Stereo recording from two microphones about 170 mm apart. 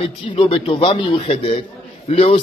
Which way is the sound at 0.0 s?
30° left (ahead or behind).